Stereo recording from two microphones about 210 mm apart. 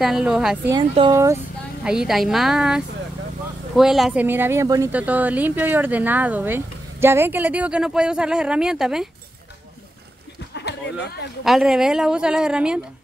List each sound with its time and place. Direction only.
0.0 s speech: centre (ahead or behind)
1.1 s speech: 15° right (ahead or behind)
1.9 s speech: centre (ahead or behind)
10.5 s a sound: 55° left (ahead or behind)
11.4 s speech: centre (ahead or behind)